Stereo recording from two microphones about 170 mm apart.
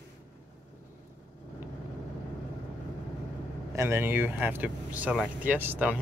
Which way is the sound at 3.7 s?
15° right (ahead or behind).